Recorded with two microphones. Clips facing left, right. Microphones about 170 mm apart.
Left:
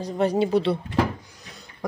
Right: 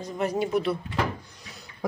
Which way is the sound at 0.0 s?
30° left (ahead or behind).